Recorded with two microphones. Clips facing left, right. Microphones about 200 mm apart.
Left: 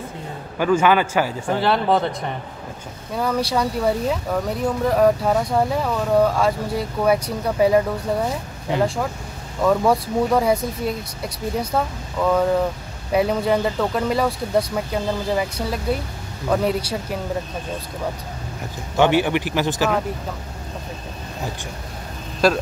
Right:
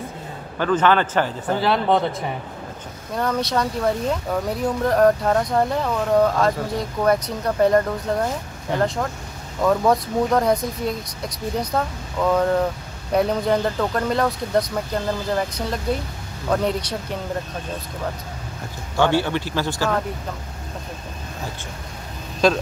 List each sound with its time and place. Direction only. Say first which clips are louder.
0.6 s speech: left 1 dB; 10° left (ahead or behind)
18.9 s speech: left 2 dB; 15° left (ahead or behind)
22.4 s speech: even; 5° left (ahead or behind)